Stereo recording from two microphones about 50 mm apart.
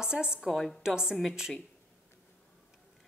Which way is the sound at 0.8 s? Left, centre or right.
Centre.